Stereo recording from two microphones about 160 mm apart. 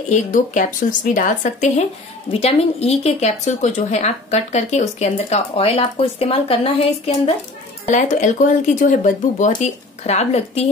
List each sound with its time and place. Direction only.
0.1 s a woman's voice: 50° left (ahead or behind)
2.3 s a woman's voice: 40° left (ahead or behind)
7.9 s a woman's voice: 50° left (ahead or behind)